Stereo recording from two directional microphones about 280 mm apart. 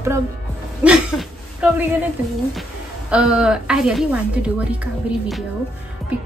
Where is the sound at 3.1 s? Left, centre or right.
Centre.